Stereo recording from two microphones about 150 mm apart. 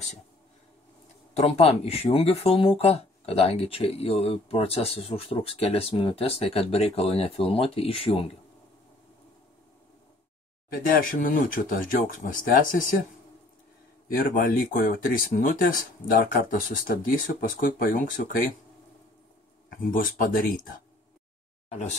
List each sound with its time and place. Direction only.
1.3 s speech: 45° left (ahead or behind)
11.1 s speech: 65° left (ahead or behind)
14.0 s speech: 70° left (ahead or behind)
19.8 s speech: 60° left (ahead or behind)
21.6 s a sound: 50° left (ahead or behind)